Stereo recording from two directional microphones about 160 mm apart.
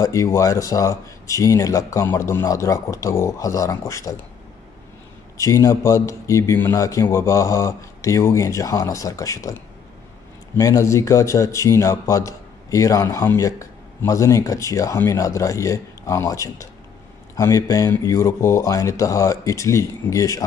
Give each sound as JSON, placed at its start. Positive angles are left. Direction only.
{"t": 0.0, "sound": "speech", "side_deg": 20}
{"t": 5.4, "sound": "speech", "side_deg": 20}